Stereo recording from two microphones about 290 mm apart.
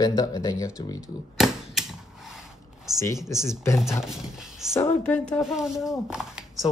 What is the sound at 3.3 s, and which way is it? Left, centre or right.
Speech, centre.